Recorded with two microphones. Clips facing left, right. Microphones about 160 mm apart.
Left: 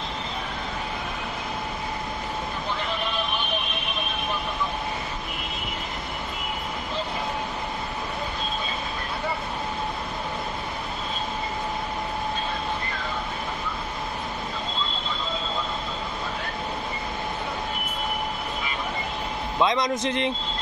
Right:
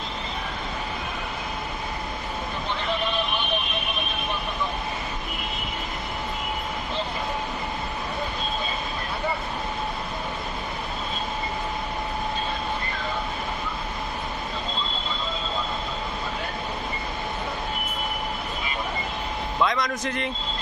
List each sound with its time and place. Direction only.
19.6 s a man's voice: 20° left (ahead or behind)